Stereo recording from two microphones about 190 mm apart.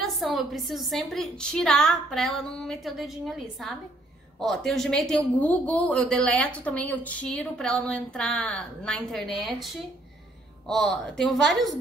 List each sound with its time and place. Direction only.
0.2 s speech: centre (ahead or behind)